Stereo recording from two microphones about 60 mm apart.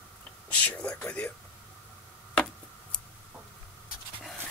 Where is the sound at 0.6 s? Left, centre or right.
Left.